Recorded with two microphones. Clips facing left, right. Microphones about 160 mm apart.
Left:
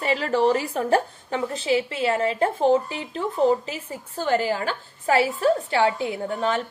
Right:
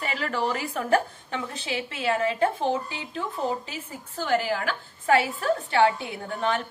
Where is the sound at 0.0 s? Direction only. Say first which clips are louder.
Left 7 dB; 30° left (ahead or behind).